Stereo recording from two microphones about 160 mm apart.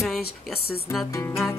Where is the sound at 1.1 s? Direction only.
15° left (ahead or behind).